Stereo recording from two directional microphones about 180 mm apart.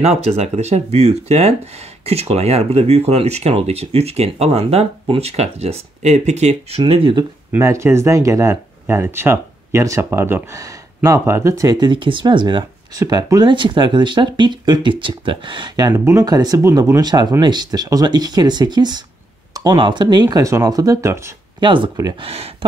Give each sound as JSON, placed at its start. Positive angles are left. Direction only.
{"t": 0.0, "sound": "speech", "side_deg": -35}
{"t": 7.5, "sound": "speech", "side_deg": -15}
{"t": 22.3, "sound": "speech", "side_deg": -35}